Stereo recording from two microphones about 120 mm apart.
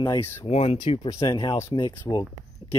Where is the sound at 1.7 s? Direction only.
40° left (ahead or behind).